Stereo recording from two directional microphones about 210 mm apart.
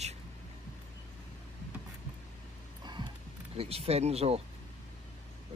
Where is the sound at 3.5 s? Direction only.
30° right (ahead or behind).